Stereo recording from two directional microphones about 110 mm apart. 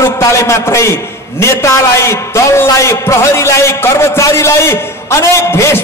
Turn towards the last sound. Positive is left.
turn(degrees=25)  # may be behind; listen again after turning